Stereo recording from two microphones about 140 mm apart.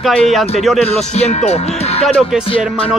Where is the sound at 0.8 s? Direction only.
50° left (ahead or behind).